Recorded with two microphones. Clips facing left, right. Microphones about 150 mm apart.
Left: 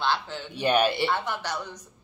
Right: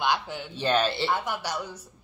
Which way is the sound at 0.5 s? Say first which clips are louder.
Left 2 dB; 15° left (ahead or behind).